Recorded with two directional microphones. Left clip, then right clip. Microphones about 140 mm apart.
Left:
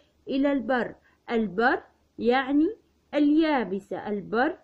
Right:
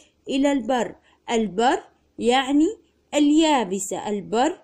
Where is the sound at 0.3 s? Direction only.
15° right (ahead or behind).